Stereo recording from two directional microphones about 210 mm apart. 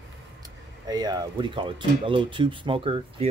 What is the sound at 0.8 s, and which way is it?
Speech, 20° right (ahead or behind).